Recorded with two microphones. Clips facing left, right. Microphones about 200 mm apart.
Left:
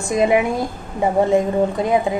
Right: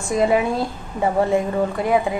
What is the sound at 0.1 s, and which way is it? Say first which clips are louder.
A woman's voice: left 1 dB; 15° left (ahead or behind).